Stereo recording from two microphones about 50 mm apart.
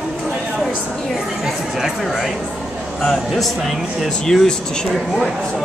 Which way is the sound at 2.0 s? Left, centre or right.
Centre.